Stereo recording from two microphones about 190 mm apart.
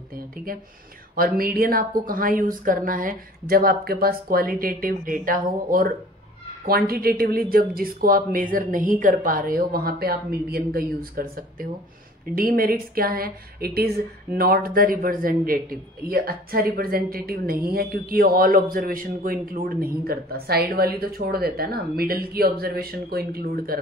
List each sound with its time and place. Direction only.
1.1 s speech: 50° right (ahead or behind)